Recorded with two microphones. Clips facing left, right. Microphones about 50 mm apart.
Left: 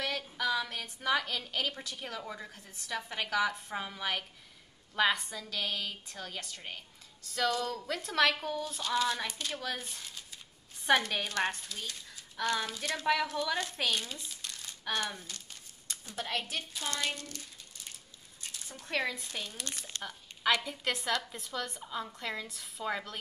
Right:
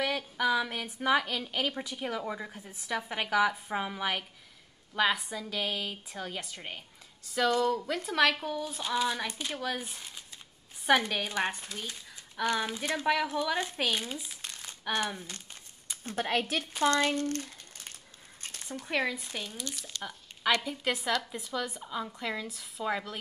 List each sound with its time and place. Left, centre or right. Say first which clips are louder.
0.0 s a woman's voice: right 4 dB; centre
13.0 s a woman's voice: right 1 dB; centre
14.3 s crumpling: right 1 dB; right
15.0 s a woman's voice: right 3 dB; centre
16.0 s a woman's voice: right 6 dB; right
18.9 s a woman's voice: right 2 dB; centre
19.5 s speech: right 2 dB; left
20.0 s a sound: right 2 dB; centre
20.6 s a woman's voice: right 3 dB; centre